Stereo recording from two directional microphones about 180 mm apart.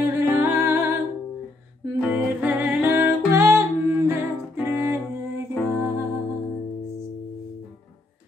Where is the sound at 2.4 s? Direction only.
10° right (ahead or behind).